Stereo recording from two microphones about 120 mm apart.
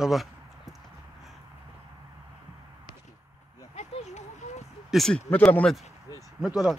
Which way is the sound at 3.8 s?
70° left (ahead or behind).